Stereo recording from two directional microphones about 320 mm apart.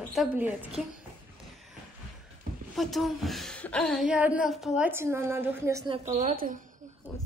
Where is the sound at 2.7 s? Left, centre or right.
Centre.